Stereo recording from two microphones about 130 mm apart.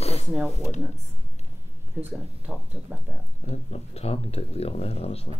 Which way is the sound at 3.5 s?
55° left (ahead or behind).